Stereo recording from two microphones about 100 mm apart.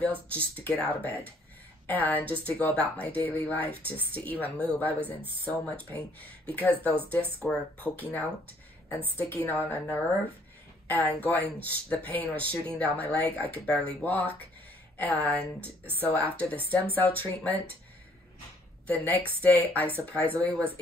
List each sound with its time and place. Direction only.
0.3 s a woman's voice: 15° left (ahead or behind)
18.9 s a woman's voice: 15° left (ahead or behind)